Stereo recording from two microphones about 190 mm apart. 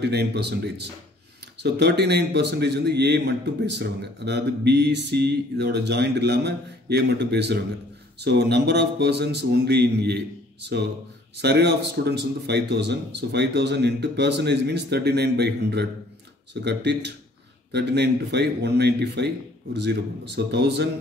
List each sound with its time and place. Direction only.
0.0 s a man's voice: 60° right (ahead or behind)